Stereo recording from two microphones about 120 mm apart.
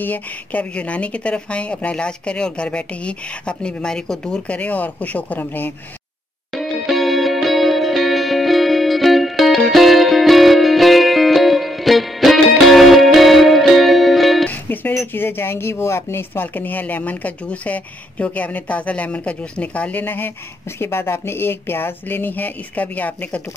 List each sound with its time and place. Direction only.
0.0 s speech: 15° left (ahead or behind)
6.5 s music: centre (ahead or behind)
14.5 s music: 15° left (ahead or behind)
15.0 s speech: 20° left (ahead or behind)